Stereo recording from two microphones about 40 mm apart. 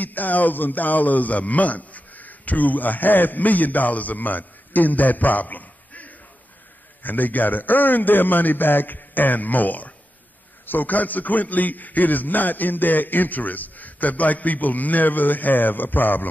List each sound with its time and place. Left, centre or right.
0.0 s a man's voice: left